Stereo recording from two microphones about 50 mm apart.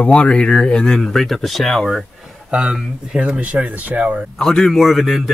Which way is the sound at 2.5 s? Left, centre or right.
Centre.